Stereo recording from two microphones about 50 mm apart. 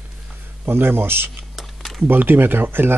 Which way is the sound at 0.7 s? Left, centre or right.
Right.